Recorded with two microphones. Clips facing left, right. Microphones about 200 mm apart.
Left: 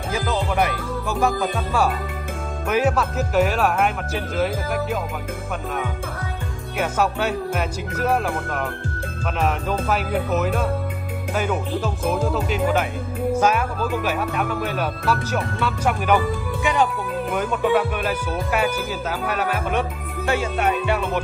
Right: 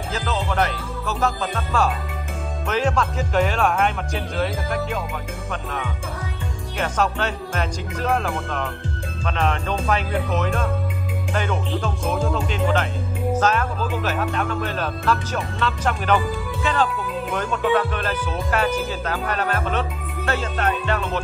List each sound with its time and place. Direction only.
0.1 s speech: 10° left (ahead or behind)
6.8 s speech: 10° left (ahead or behind)
13.7 s speech: 45° left (ahead or behind)
14.0 s speech: 10° left (ahead or behind)